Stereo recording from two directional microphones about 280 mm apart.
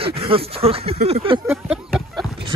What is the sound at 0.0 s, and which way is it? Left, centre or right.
Speech, centre.